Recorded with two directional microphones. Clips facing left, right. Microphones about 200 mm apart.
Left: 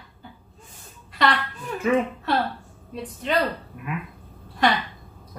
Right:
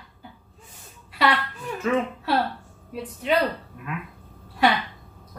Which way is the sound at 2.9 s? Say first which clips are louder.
Right 3 dB; 5° right (ahead or behind).